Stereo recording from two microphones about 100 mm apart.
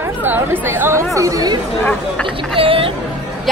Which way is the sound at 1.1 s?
35° right (ahead or behind).